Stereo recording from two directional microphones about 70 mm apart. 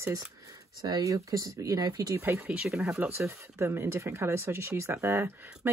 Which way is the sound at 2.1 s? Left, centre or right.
Right.